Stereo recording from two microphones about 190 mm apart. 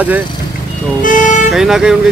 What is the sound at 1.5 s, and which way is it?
Speech, centre (ahead or behind).